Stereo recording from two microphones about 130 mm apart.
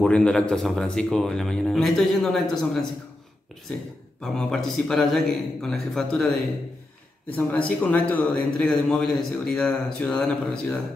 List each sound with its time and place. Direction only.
0.0 s a man's voice: 10° left (ahead or behind)
4.2 s a man's voice: 5° left (ahead or behind)